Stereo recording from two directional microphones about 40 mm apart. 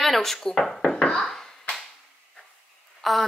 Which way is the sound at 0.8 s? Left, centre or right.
Left.